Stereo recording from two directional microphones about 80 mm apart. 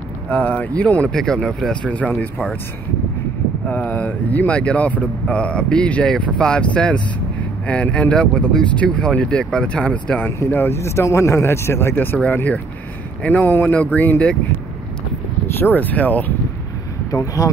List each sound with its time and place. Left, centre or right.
0.3 s speech: centre
1.1 s speech: centre
3.6 s speech: centre
10.5 s speech: left
13.2 s speech: left
15.4 s speech: left
17.1 s speech: left